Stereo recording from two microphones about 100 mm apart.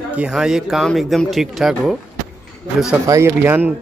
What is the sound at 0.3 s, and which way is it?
Speech, 5° right (ahead or behind).